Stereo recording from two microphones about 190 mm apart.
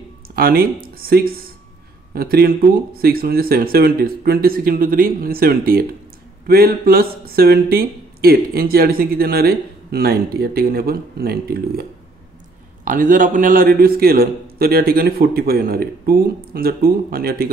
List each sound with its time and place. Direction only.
0.4 s speech: 50° right (ahead or behind)